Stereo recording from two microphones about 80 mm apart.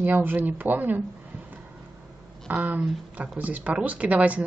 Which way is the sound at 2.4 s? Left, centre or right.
Right.